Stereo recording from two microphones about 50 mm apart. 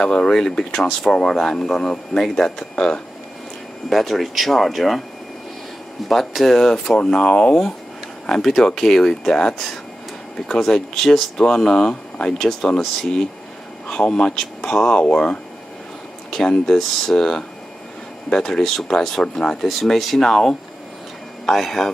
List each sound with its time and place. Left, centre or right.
0.0 s speech: centre
3.9 s speech: centre
6.0 s speech: centre
16.3 s speech: centre